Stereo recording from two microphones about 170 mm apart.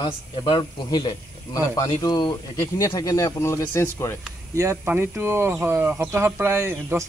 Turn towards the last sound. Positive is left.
turn(degrees=-15)  # may be behind; listen again after turning